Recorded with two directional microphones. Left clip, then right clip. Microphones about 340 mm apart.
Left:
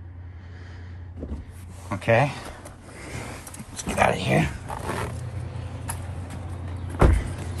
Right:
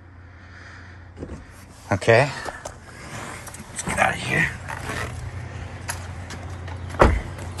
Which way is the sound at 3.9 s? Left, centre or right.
Centre.